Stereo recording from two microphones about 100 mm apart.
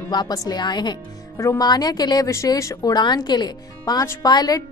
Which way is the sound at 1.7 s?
40° left (ahead or behind).